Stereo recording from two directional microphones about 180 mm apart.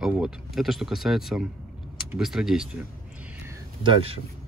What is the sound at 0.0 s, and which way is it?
Speech, 5° right (ahead or behind).